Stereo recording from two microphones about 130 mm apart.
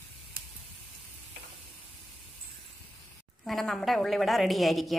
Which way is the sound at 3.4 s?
Centre (ahead or behind).